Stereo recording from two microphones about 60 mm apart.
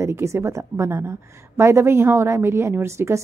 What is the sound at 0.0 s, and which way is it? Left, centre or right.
A woman's voice, right.